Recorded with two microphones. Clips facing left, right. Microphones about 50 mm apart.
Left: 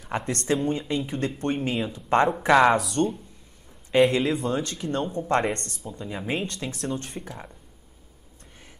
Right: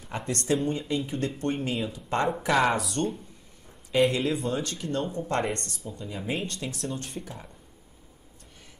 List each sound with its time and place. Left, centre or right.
0.1 s speech: left
2.5 s speech: centre
3.9 s speech: left